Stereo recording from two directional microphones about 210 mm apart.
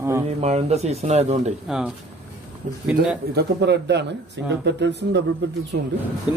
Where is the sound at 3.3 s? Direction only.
50° right (ahead or behind).